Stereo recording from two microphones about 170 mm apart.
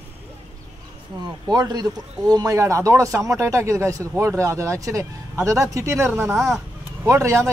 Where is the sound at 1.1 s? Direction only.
20° right (ahead or behind).